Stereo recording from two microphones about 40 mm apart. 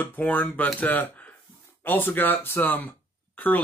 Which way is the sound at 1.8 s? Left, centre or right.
Left.